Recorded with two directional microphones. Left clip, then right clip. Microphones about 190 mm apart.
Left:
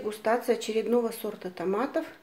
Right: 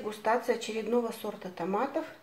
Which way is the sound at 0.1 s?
35° left (ahead or behind).